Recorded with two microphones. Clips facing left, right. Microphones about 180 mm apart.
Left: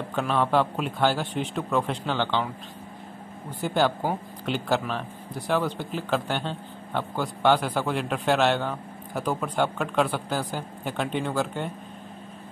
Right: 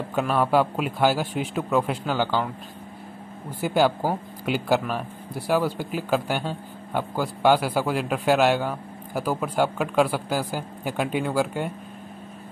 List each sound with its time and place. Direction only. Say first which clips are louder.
0.1 s speech: right 2 dB; 5° right (ahead or behind)
3.6 s speech: right 3 dB; 10° right (ahead or behind)